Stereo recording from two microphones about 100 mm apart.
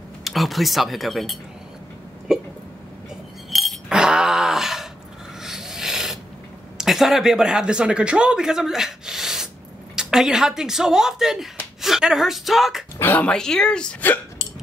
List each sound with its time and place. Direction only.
0.2 s speech: centre (ahead or behind)
2.3 s hiccup: 5° right (ahead or behind)
3.4 s chink: centre (ahead or behind)
5.4 s filing: 5° right (ahead or behind)
6.8 s a woman's voice: centre (ahead or behind)
13.0 s speech: 20° left (ahead or behind)
13.3 s speech: 5° left (ahead or behind)